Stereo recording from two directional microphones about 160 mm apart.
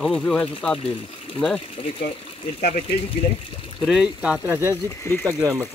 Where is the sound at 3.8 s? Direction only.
5° right (ahead or behind).